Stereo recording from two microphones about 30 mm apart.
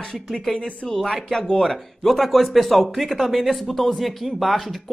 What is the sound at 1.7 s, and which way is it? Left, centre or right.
Speech, centre.